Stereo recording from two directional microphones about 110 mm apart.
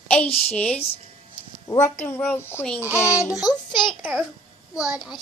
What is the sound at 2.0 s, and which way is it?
Speech, 15° left (ahead or behind).